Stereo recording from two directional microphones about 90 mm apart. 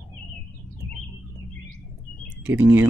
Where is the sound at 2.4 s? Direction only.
25° right (ahead or behind).